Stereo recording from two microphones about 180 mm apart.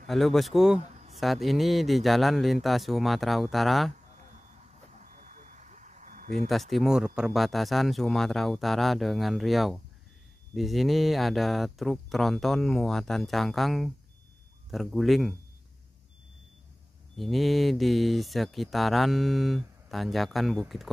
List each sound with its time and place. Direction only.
0.0 s speech: centre (ahead or behind)
0.7 s a sound: 40° right (ahead or behind)
1.1 s speech: centre (ahead or behind)
5.0 s reversing beeps: 45° right (ahead or behind)
6.5 s speech: centre (ahead or behind)
17.2 s speech: centre (ahead or behind)